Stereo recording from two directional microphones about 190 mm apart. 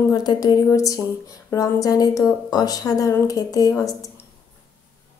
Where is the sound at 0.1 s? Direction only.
20° left (ahead or behind).